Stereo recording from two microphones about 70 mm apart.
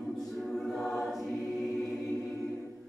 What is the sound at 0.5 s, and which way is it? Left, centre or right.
Choir, centre.